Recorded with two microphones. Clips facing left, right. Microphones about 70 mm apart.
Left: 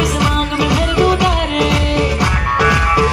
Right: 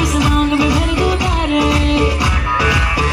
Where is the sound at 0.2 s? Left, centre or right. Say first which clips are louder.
Right 2 dB; left.